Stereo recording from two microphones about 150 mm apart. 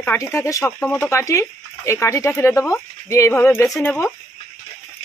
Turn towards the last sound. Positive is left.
turn(degrees=15)  # may be behind; listen again after turning